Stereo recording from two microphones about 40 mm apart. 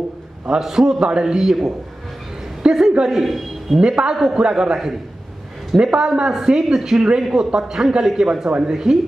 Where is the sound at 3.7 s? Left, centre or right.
Right.